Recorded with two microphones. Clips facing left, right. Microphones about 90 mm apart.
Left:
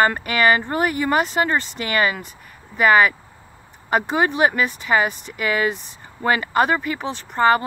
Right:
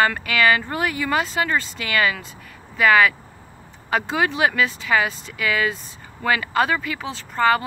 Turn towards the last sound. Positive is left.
turn(degrees=25)  # may be behind; listen again after turning